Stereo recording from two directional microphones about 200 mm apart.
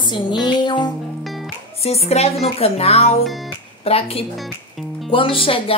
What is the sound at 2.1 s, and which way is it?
A woman's voice, 30° left (ahead or behind).